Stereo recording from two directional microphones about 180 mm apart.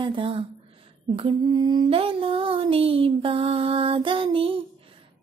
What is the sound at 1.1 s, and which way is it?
Female singing, 25° right (ahead or behind).